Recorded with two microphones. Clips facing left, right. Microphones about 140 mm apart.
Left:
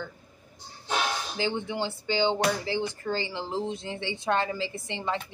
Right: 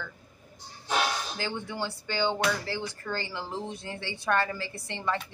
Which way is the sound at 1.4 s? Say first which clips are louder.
Left 4 dB; 20° left (ahead or behind).